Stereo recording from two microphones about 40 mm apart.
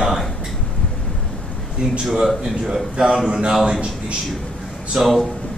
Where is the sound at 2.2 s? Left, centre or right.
Centre.